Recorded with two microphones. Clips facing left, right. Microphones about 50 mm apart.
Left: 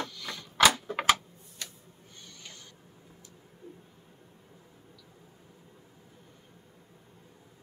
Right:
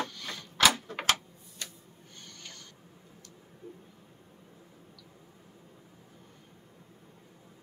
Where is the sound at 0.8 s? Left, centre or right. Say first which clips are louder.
Left 5 dB; centre.